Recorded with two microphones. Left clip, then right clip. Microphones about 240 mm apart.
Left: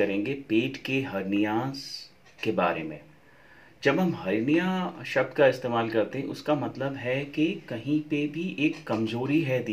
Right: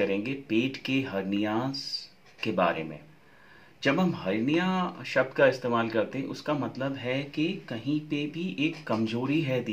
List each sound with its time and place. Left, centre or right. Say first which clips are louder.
0.0 s speech: left 2 dB; centre
3.8 s speech: left 2 dB; centre